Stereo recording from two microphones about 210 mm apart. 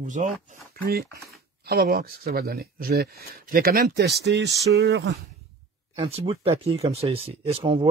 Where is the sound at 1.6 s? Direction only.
45° right (ahead or behind).